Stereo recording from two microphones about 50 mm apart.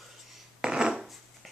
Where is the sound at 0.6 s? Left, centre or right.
Centre.